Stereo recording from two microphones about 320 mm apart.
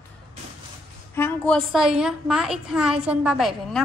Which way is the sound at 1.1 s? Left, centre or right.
Centre.